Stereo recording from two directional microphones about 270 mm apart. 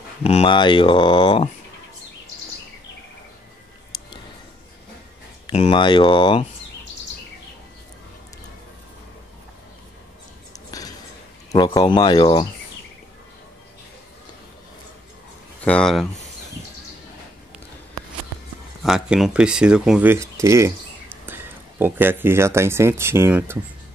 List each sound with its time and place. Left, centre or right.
0.2 s speech: left
5.5 s speech: left
10.5 s a sound: centre
11.5 s speech: centre
15.6 s speech: centre
18.8 s speech: centre